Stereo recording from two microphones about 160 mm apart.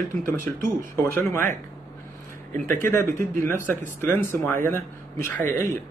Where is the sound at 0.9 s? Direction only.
15° left (ahead or behind).